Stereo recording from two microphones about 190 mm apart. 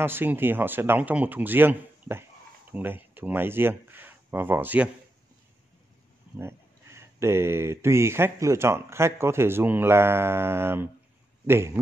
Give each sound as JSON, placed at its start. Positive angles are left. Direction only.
{"t": 0.0, "sound": "speech", "side_deg": -10}
{"t": 6.3, "sound": "speech", "side_deg": -15}